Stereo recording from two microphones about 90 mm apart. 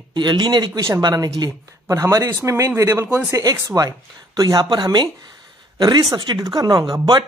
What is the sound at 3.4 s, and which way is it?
Speech, 45° right (ahead or behind).